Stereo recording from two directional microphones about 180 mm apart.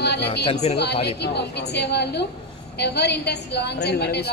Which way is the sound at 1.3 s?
70° left (ahead or behind).